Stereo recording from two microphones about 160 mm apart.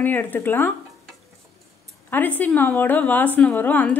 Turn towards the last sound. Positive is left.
turn(degrees=10)  # may be behind; listen again after turning